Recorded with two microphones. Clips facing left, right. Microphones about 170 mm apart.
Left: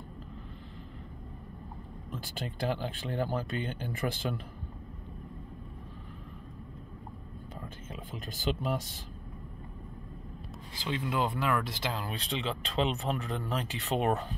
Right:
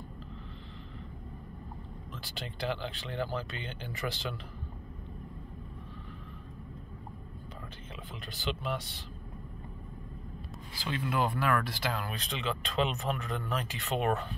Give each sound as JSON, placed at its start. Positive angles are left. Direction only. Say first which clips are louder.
{"t": 2.1, "sound": "speech", "louder": "left 4 dB", "side_deg": 45}
{"t": 7.9, "sound": "speech", "louder": "left 3 dB", "side_deg": 45}
{"t": 10.8, "sound": "speech", "louder": "even", "side_deg": 20}